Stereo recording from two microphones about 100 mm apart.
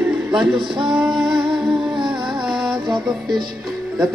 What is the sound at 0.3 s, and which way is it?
Speech, 5° right (ahead or behind).